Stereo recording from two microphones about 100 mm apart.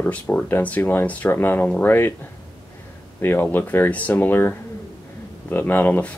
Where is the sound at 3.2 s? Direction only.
20° left (ahead or behind).